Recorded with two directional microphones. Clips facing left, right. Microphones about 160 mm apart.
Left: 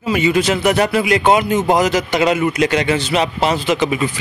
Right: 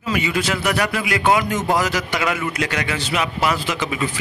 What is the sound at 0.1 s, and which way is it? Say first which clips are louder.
A man's voice: left 6 dB; 25° left (ahead or behind).